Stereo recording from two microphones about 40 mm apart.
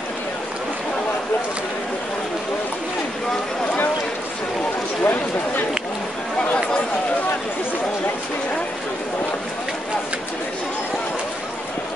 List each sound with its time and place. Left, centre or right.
5.0 s speech: left